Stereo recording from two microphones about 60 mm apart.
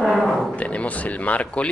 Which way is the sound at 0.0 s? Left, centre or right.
Centre.